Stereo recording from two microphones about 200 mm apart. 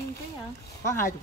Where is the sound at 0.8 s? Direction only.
15° left (ahead or behind).